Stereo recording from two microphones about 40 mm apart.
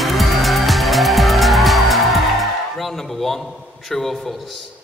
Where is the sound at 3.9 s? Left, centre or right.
Centre.